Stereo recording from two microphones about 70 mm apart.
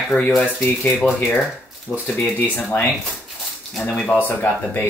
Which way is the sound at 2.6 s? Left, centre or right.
Left.